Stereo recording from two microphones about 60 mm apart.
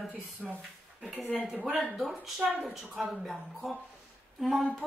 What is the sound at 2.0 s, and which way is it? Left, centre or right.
A woman's voice, centre.